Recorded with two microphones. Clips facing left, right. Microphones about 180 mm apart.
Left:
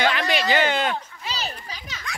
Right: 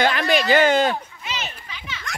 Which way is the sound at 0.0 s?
45° right (ahead or behind).